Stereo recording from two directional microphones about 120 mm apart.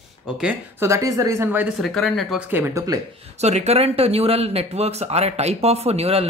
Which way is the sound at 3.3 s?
65° right (ahead or behind).